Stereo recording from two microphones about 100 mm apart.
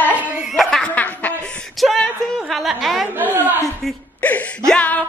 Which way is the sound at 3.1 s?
20° right (ahead or behind).